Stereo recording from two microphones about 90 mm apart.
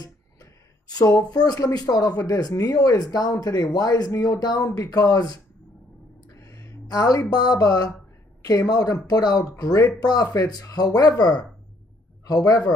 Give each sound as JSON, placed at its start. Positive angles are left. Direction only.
{"t": 1.3, "sound": "speech", "side_deg": 45}
{"t": 6.4, "sound": "speech", "side_deg": 45}